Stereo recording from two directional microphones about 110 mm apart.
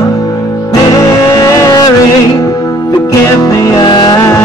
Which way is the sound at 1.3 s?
30° left (ahead or behind).